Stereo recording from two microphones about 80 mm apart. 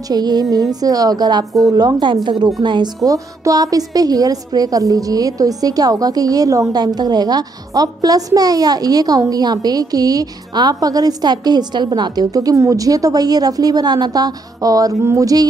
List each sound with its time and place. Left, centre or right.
0.1 s a woman's voice: right
2.2 s a woman's voice: right
3.0 s a woman's voice: right